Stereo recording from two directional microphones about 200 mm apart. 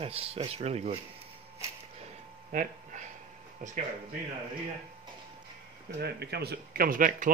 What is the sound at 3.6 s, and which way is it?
Speech, 40° right (ahead or behind).